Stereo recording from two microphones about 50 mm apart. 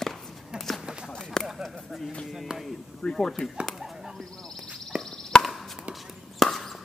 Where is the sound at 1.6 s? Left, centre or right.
Centre.